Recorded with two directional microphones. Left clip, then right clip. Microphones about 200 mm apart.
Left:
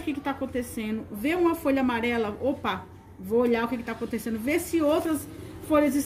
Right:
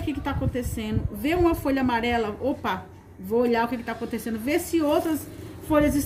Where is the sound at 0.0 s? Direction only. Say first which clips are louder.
Right 1 dB; 5° left (ahead or behind).